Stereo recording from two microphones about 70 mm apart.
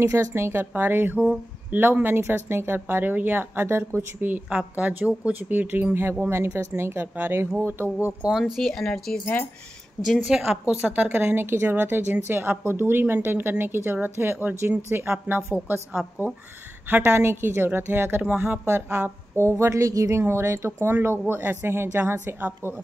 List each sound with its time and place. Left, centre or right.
0.0 s a woman's voice: right
4.3 s a woman's voice: centre
8.2 s speech: centre
8.5 s speech: centre
9.2 s speech: left
10.0 s speech: centre
10.9 s a woman's voice: right
16.9 s a woman's voice: right
18.7 s a woman's voice: right